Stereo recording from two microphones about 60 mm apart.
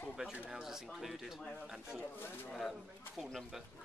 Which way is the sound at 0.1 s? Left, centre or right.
Centre.